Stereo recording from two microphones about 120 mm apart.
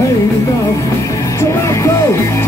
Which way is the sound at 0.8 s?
25° left (ahead or behind).